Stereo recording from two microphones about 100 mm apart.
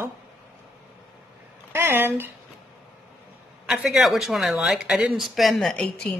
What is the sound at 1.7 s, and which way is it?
Speech, 25° right (ahead or behind).